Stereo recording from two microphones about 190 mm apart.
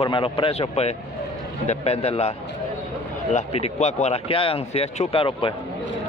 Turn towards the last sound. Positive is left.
turn(degrees=30)  # may be behind; listen again after turning